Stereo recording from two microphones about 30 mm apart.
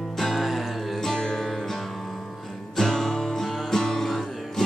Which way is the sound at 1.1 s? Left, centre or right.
Centre.